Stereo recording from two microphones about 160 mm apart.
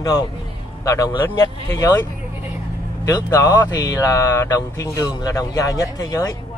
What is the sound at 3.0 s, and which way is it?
Speech, 20° left (ahead or behind).